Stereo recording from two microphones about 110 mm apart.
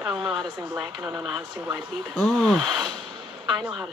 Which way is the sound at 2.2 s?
Centre (ahead or behind).